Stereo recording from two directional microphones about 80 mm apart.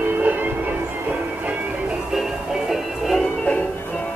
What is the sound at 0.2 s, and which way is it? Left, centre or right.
Music, right.